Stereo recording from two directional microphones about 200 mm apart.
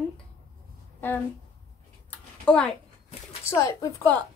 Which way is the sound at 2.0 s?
5° left (ahead or behind).